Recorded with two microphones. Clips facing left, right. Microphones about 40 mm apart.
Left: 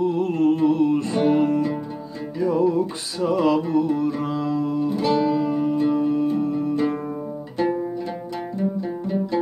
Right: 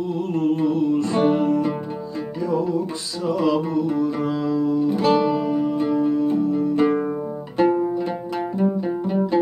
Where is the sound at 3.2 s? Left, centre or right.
Left.